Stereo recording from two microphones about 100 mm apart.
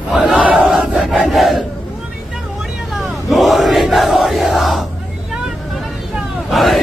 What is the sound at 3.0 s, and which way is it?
Crowd, centre (ahead or behind).